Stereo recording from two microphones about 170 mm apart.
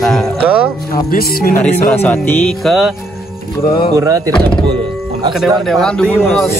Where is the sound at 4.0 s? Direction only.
20° right (ahead or behind).